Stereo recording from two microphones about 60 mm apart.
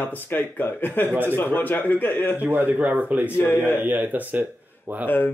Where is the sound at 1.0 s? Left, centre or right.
Right.